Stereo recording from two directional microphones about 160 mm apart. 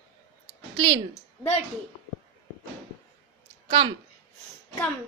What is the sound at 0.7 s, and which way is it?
Speech, 30° right (ahead or behind).